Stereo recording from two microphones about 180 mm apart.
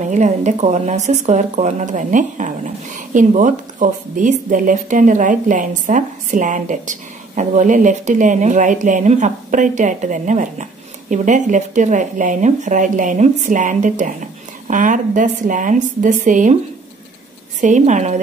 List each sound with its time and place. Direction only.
0.0 s a woman's voice: 40° right (ahead or behind)
17.6 s a woman's voice: 45° right (ahead or behind)